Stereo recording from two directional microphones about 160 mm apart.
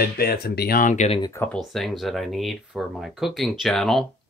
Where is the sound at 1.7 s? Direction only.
Centre (ahead or behind).